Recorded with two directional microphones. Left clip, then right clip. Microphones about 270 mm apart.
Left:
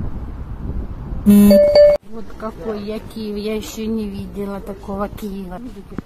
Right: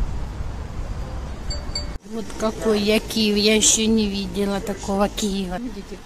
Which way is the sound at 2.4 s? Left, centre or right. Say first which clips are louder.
Right 5 dB; right.